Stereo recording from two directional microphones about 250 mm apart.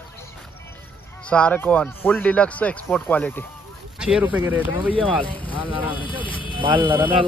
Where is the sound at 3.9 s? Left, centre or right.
Centre.